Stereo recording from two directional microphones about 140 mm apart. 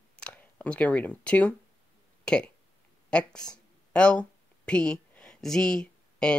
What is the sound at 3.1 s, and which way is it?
Speech, 5° left (ahead or behind).